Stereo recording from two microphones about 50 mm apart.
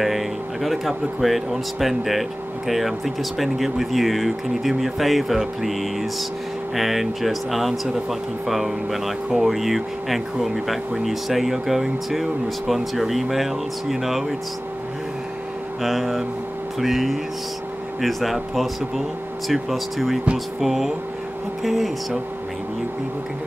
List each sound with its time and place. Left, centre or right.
0.0 s speech: centre
15.8 s speech: centre